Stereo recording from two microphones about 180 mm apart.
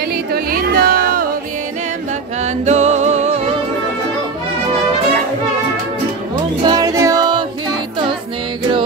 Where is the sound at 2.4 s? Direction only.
40° right (ahead or behind).